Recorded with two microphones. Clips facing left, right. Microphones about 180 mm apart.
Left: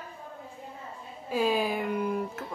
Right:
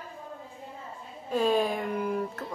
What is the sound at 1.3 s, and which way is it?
Speech, 5° left (ahead or behind).